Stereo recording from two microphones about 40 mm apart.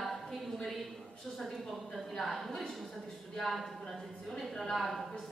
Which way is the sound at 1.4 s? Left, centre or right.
Centre.